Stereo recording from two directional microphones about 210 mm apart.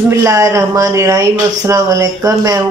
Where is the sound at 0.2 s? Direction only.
15° right (ahead or behind).